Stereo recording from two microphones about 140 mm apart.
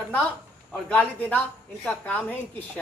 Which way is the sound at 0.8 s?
10° left (ahead or behind).